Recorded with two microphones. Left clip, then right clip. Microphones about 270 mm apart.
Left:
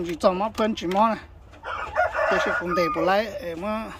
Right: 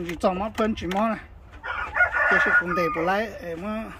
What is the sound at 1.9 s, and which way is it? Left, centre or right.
Crowing, left.